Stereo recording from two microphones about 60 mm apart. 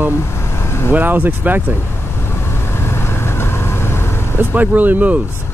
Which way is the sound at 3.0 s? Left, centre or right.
Left.